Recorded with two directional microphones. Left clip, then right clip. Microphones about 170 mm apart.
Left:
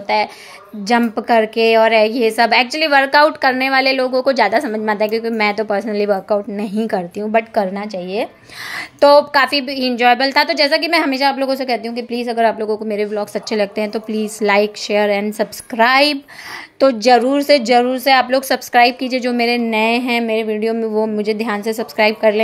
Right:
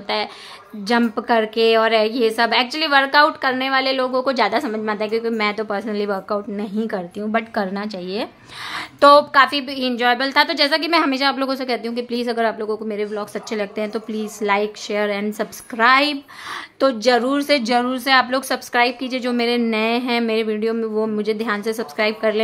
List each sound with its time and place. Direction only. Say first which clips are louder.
0.1 s a woman's voice: left 9 dB; 10° left (ahead or behind)
7.3 s a woman's voice: left 6 dB; 10° left (ahead or behind)
12.4 s a woman's voice: left 5 dB; 15° left (ahead or behind)
20.2 s a woman's voice: left 3 dB; 5° left (ahead or behind)